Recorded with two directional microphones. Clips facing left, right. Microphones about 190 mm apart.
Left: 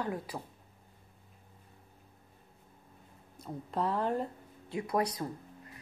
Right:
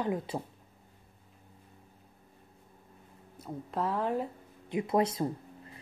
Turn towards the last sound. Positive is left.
turn(degrees=-25)  # may be behind; listen again after turning